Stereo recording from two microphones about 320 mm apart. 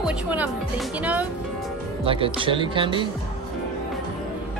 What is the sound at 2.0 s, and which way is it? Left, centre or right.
Speech, centre.